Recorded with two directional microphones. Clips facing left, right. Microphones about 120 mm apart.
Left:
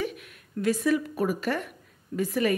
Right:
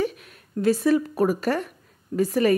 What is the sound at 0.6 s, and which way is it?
A woman's voice, 30° right (ahead or behind).